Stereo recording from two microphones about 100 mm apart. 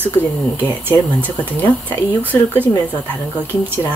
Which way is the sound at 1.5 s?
20° left (ahead or behind).